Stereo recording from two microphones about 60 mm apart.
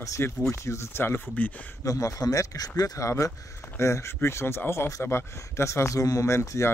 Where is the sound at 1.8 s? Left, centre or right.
Left.